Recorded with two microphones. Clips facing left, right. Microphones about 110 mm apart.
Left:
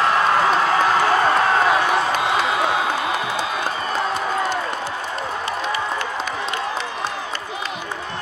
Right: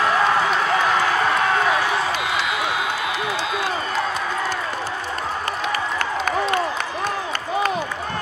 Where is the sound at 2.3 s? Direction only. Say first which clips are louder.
Left 4 dB; 40° left (ahead or behind).